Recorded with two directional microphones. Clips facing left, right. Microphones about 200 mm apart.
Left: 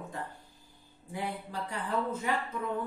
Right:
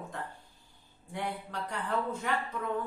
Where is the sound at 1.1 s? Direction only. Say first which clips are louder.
Even; 5° left (ahead or behind).